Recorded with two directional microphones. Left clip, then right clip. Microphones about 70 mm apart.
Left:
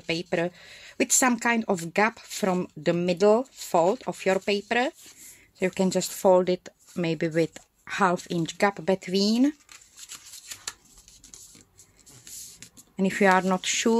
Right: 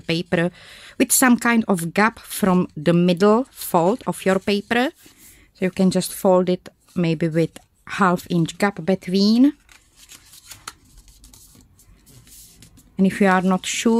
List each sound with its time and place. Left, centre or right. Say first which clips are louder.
0.0 s speech: right 5 dB; right
1.3 s speech: right 6 dB; right
4.1 s speech: right 5 dB; right
4.5 s speech: right 4 dB; right
5.8 s speech: right 6 dB; right
12.9 s speech: right 3 dB; right